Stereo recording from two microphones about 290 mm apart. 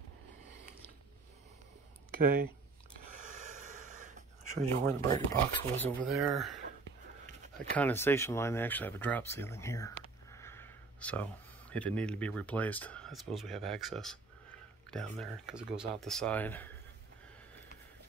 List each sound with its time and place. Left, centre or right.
2.0 s speech: right
3.6 s a sound: right
5.1 s speech: centre
7.5 s speech: centre